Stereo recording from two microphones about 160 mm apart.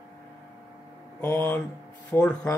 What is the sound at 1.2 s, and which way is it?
Speech, 15° left (ahead or behind).